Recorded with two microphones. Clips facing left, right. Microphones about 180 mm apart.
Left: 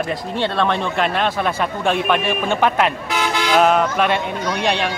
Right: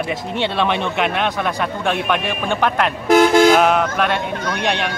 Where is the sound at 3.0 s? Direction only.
45° right (ahead or behind).